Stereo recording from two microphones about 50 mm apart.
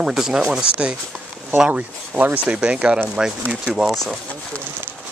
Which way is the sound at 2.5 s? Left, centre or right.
Centre.